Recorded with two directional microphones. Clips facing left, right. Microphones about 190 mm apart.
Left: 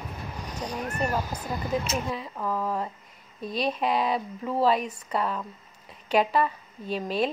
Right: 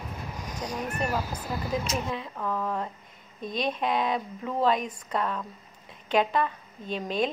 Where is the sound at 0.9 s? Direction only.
10° right (ahead or behind).